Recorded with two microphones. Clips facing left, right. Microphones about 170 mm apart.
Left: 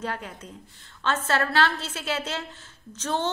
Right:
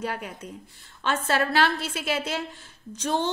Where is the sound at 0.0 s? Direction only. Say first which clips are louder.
Right 1 dB; 10° right (ahead or behind).